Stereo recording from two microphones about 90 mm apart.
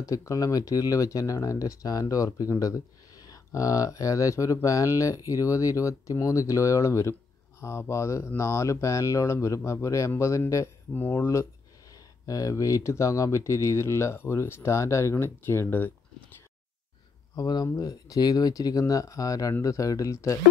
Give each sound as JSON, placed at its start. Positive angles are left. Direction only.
{"t": 0.0, "sound": "speech", "side_deg": 35}
{"t": 10.9, "sound": "speech", "side_deg": 20}
{"t": 17.4, "sound": "speech", "side_deg": 50}